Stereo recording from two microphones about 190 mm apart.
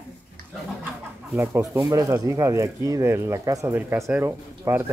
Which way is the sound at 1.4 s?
15° right (ahead or behind).